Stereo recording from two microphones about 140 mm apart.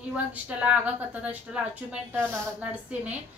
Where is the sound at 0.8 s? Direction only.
10° right (ahead or behind).